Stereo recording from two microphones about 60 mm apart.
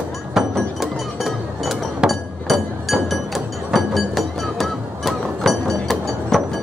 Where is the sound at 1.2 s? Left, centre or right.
Centre.